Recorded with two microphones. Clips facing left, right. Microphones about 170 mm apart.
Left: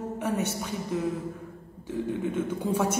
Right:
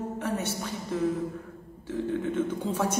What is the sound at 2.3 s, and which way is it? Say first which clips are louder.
Speech: left 1 dB; 10° left (ahead or behind).